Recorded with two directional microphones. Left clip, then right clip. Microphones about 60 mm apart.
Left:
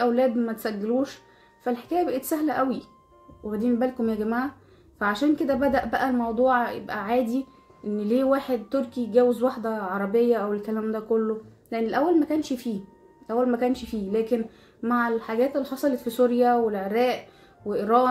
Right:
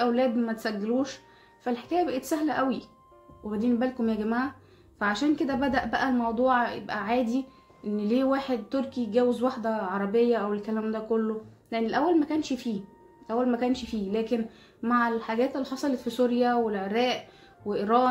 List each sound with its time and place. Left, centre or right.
0.0 s a woman's voice: centre
0.9 s speech: centre
4.9 s a woman's voice: centre
10.1 s a woman's voice: centre
13.4 s speech: centre
14.1 s a woman's voice: centre